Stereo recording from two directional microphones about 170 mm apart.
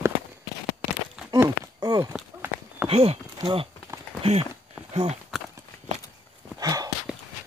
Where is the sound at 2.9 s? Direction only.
35° right (ahead or behind).